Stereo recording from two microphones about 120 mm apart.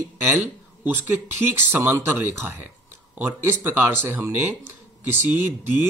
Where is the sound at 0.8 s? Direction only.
15° right (ahead or behind).